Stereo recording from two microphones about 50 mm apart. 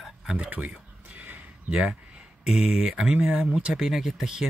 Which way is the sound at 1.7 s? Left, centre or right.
Centre.